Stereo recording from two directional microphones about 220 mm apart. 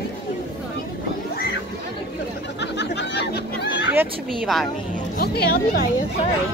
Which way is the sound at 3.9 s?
5° right (ahead or behind).